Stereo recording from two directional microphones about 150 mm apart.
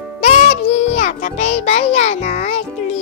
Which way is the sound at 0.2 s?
45° left (ahead or behind).